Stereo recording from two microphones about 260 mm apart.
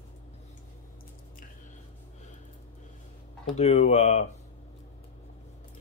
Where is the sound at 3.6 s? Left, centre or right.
Left.